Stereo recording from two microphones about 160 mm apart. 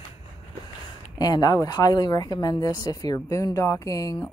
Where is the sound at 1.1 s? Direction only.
25° left (ahead or behind).